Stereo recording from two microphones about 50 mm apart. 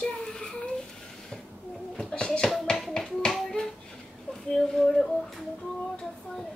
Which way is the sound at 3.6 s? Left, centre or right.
Centre.